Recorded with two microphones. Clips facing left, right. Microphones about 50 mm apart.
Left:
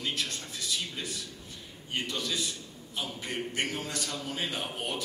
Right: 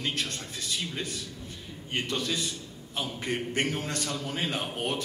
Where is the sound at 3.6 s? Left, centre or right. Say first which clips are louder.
Right 3 dB; right.